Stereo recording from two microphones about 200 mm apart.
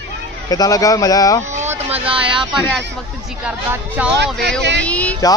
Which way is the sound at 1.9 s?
25° right (ahead or behind).